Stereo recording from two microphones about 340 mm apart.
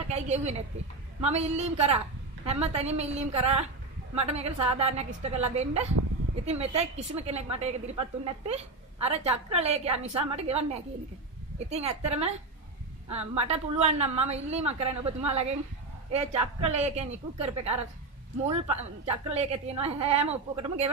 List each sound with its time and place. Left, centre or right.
0.1 s a woman's voice: centre